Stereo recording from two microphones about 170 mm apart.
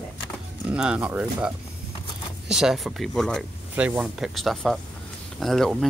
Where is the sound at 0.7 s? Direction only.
5° right (ahead or behind).